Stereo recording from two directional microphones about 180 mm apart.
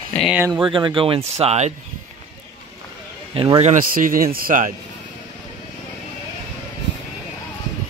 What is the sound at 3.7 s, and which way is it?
Speech, 50° right (ahead or behind).